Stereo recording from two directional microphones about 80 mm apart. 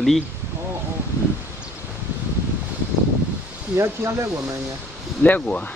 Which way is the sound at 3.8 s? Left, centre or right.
Right.